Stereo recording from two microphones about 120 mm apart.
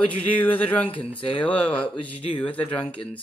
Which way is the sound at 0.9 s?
45° left (ahead or behind).